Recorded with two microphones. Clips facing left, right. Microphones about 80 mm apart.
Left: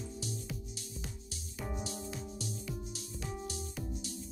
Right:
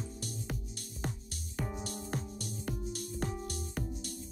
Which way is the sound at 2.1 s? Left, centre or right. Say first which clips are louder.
Right 2 dB; right.